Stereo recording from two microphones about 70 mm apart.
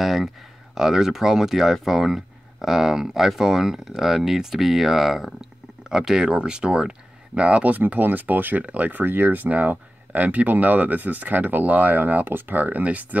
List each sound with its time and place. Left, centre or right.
0.0 s speech: centre; by 13.2 s right